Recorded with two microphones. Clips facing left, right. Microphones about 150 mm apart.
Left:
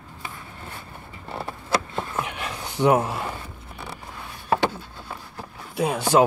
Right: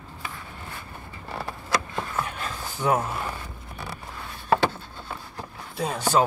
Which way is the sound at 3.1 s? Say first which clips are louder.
Left 1 dB; 20° left (ahead or behind).